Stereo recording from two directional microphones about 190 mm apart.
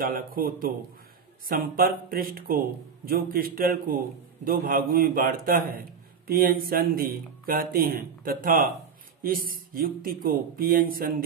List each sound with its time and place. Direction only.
0.0 s a man's voice: 50° right (ahead or behind)